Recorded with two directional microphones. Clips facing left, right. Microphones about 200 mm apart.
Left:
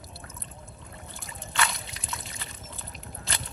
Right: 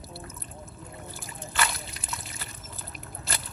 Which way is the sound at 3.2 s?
Centre (ahead or behind).